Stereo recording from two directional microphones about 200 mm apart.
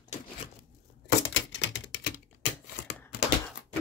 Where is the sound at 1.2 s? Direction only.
65° left (ahead or behind).